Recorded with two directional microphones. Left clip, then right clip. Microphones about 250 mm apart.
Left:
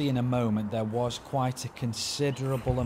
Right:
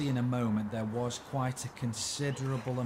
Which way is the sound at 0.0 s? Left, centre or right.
Left.